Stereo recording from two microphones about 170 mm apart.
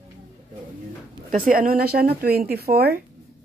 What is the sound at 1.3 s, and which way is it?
Speech, 55° right (ahead or behind).